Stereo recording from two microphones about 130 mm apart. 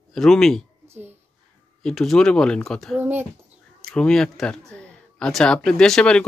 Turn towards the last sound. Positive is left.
turn(degrees=5)  # may be behind; listen again after turning